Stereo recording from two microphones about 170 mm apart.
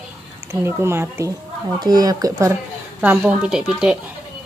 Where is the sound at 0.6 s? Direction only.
15° right (ahead or behind).